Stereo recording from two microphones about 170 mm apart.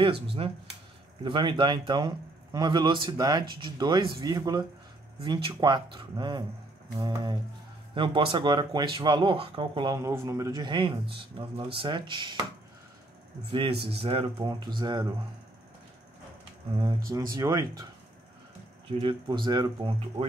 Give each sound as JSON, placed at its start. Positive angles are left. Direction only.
{"t": 0.0, "sound": "speech", "side_deg": -35}
{"t": 13.5, "sound": "speech", "side_deg": -30}
{"t": 17.1, "sound": "speech", "side_deg": -20}
{"t": 18.9, "sound": "speech", "side_deg": -30}